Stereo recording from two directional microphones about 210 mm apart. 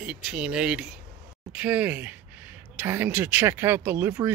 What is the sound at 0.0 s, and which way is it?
Speech, 5° right (ahead or behind).